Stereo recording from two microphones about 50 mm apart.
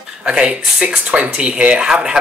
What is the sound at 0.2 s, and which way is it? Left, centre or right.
Speech, centre.